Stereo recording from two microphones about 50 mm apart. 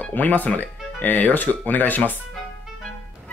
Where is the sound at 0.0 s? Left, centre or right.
Left.